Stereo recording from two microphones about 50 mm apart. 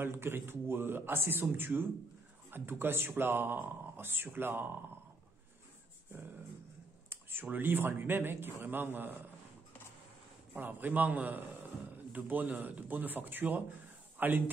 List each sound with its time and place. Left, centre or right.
0.0 s speech: right
7.1 s a sound: right
7.4 s speech: right
10.5 s a man's voice: right